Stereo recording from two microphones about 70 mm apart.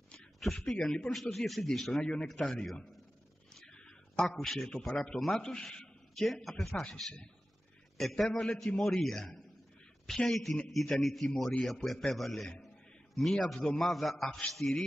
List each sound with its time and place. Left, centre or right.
0.4 s a man's voice: centre
3.5 s a sound: centre
4.4 s a man's voice: centre
6.7 s a man's voice: centre
8.0 s a man's voice: centre